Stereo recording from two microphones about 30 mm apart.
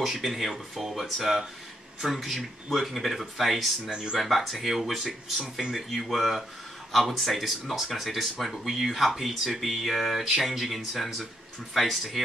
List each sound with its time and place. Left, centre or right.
0.2 s speech: centre
2.0 s speech: centre
3.9 s speech: right
4.2 s speech: centre
5.4 s speech: right
5.9 s speech: centre